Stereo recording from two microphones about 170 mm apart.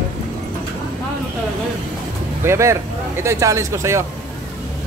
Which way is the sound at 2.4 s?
15° right (ahead or behind).